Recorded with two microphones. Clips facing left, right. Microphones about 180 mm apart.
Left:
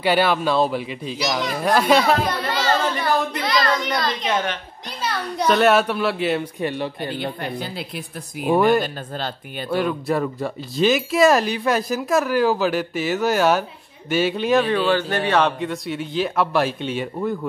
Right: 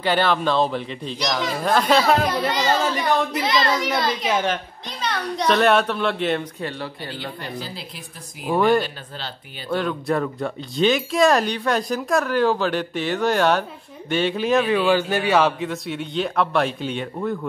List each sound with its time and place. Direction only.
0.0 s speech: 10° left (ahead or behind)
2.2 s speech: 10° right (ahead or behind)
3.4 s speech: 25° right (ahead or behind)
4.1 s speech: 5° right (ahead or behind)
4.8 s speech: 5° left (ahead or behind)
7.2 s speech: 55° left (ahead or behind)
8.5 s speech: 5° left (ahead or behind)
8.8 s speech: 50° left (ahead or behind)
9.7 s speech: 5° left (ahead or behind)